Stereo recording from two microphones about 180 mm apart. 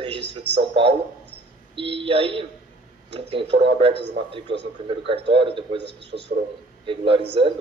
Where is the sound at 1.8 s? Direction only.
30° right (ahead or behind).